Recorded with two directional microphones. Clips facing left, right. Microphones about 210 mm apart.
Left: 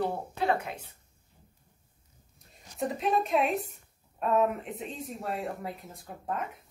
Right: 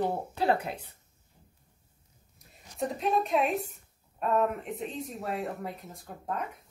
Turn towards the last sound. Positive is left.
turn(degrees=0)  # may be behind; listen again after turning